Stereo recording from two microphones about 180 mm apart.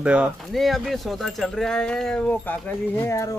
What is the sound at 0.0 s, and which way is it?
Speech, 5° right (ahead or behind).